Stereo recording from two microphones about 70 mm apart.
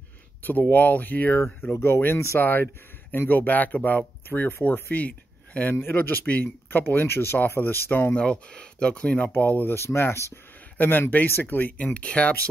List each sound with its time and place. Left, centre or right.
0.4 s speech: left
2.4 s speech: left
4.3 s speech: left
8.2 s speech: centre
9.8 s speech: left; by 12.4 s centre